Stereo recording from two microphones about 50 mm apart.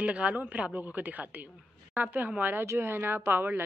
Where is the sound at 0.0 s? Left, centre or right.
Right.